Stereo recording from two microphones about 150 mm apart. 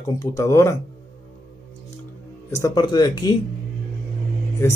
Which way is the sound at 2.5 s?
20° left (ahead or behind).